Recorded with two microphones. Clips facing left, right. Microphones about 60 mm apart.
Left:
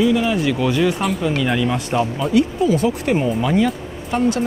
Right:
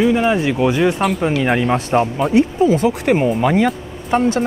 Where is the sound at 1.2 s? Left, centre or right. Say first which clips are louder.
Right 3 dB; right.